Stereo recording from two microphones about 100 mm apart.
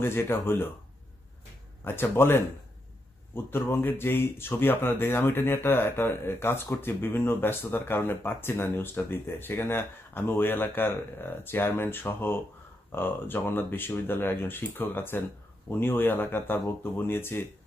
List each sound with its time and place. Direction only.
0.0 s speech: 25° left (ahead or behind)
1.9 s speech: 25° left (ahead or behind)